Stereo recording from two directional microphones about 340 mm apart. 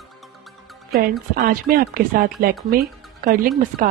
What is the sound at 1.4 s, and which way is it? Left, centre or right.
Speech, right.